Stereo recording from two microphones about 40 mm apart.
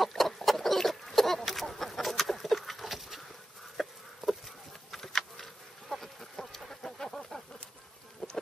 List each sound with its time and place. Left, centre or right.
0.0 s chicken: centre
3.7 s a sound: centre
8.2 s insect: left